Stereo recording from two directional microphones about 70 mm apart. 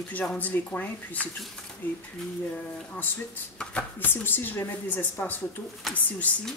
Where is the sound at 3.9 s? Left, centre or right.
Left.